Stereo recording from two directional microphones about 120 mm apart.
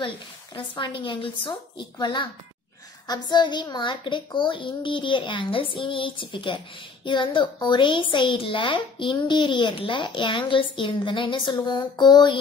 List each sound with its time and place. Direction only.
0.6 s a child's voice: 40° left (ahead or behind)